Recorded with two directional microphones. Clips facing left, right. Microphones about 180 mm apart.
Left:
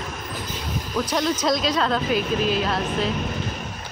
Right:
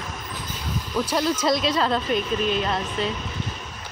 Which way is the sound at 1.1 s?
5° right (ahead or behind).